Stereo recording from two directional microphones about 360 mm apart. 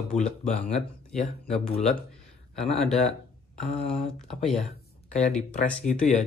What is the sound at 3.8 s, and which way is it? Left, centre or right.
Speech, centre.